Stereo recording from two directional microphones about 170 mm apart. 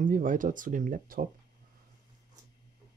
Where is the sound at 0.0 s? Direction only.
50° right (ahead or behind).